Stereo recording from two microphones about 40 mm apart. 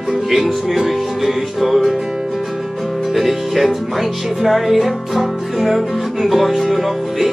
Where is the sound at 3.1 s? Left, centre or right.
Centre.